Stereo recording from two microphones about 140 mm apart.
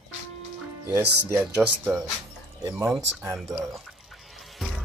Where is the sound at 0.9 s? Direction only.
20° right (ahead or behind).